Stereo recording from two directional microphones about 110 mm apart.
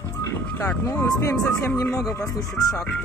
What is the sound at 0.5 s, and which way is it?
Speech, 20° left (ahead or behind).